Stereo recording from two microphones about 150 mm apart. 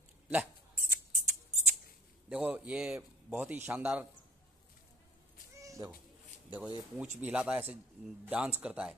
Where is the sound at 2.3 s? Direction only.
5° right (ahead or behind).